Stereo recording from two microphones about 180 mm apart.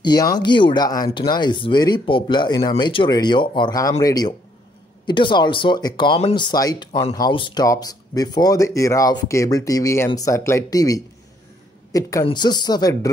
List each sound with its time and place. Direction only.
0.0 s speech: 20° left (ahead or behind)